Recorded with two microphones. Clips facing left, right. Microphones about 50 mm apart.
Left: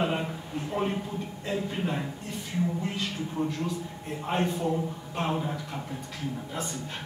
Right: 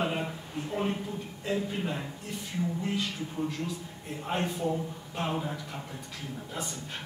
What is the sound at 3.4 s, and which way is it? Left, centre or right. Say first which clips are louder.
Speech: left 3 dB; left.